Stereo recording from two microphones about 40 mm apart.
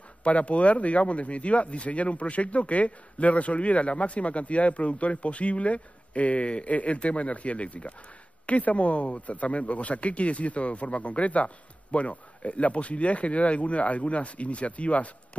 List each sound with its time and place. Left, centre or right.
0.2 s speech: left